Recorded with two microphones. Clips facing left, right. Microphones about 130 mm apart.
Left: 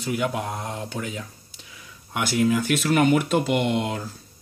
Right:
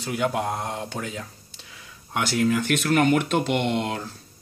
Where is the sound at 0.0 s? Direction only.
45° right (ahead or behind).